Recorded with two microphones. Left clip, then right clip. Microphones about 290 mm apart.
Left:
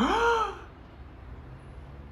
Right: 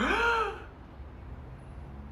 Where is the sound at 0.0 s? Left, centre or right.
Centre.